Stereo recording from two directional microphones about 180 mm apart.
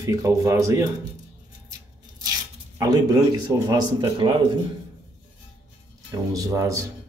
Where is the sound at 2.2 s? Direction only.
20° right (ahead or behind).